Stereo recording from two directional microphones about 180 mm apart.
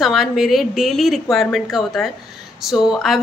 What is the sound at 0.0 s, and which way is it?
Speech, centre (ahead or behind).